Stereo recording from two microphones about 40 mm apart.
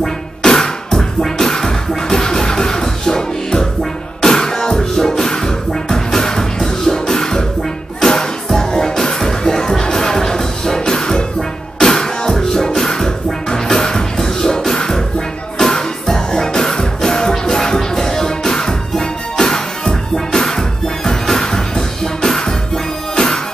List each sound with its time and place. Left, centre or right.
0.0 s music: centre